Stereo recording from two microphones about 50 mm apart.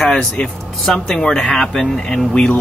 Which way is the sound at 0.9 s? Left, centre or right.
Centre.